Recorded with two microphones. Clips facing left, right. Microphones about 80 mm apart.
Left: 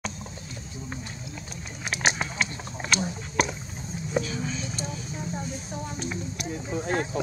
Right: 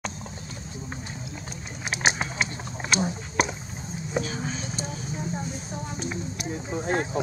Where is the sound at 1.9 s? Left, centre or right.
Centre.